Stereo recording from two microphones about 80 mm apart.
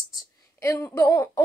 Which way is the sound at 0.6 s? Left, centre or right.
Left.